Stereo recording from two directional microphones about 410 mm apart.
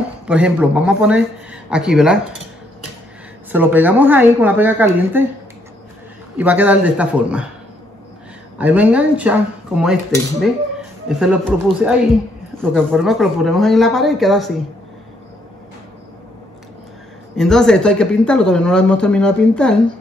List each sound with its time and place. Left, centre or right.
0.3 s speech: centre
3.5 s speech: centre
6.3 s speech: centre
8.5 s speech: centre
17.4 s speech: centre